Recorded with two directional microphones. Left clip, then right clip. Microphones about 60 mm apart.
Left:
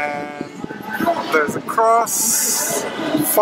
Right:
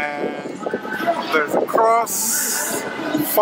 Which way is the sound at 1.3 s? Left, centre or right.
Centre.